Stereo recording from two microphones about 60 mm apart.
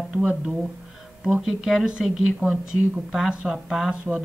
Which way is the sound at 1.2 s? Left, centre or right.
Centre.